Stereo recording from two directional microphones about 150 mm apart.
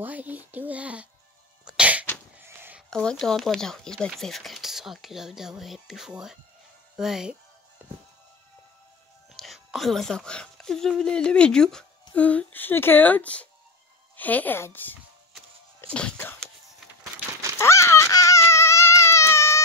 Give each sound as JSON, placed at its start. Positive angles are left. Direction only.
{"t": 0.0, "sound": "a child's voice", "side_deg": -10}
{"t": 1.6, "sound": "cough", "side_deg": -5}
{"t": 2.4, "sound": "a sound", "side_deg": -15}
{"t": 2.9, "sound": "speech", "side_deg": 5}
{"t": 9.4, "sound": "speech", "side_deg": 0}
{"t": 17.6, "sound": "baby cry", "side_deg": 20}